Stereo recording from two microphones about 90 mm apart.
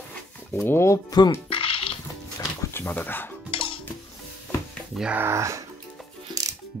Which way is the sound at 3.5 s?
85° left.